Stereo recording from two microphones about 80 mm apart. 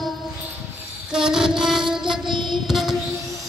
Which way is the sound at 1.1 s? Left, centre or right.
Centre.